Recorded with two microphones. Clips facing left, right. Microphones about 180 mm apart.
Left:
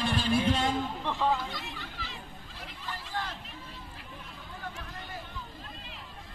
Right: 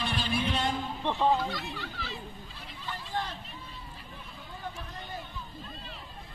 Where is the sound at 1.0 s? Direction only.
25° right (ahead or behind).